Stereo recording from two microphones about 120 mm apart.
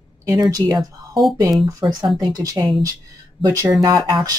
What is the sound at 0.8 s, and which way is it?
Speech, centre (ahead or behind).